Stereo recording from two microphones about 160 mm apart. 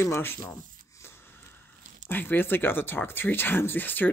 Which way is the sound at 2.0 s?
10° left (ahead or behind).